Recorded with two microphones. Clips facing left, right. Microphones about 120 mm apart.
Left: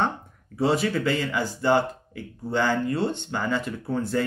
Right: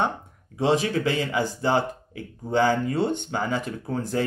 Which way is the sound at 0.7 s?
20° right (ahead or behind).